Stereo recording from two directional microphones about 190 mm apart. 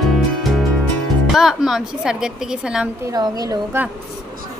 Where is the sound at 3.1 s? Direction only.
20° right (ahead or behind).